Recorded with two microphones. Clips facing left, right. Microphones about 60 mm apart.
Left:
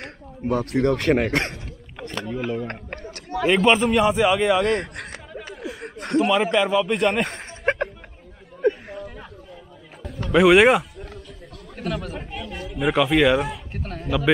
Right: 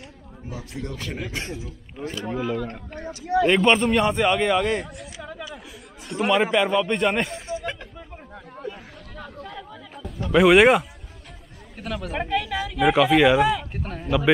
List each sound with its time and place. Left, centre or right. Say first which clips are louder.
0.0 s speech: left 10 dB; left
3.4 s a man's voice: left 2 dB; centre
4.6 s chatter: left 3 dB; left
5.8 s a sound: left 8 dB; left
6.2 s a man's voice: right 2 dB; centre
7.2 s a sound: left 5 dB; left
8.6 s a sound: left 14 dB; left
10.3 s a man's voice: even; centre
12.1 s speech: right 8 dB; right
12.9 s a man's voice: even; centre
13.4 s a man's voice: right 7 dB; right
13.7 s a man's voice: right 1 dB; centre